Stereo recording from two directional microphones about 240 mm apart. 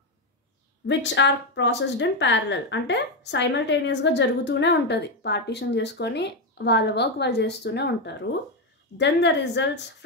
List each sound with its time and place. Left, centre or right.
0.8 s speech: left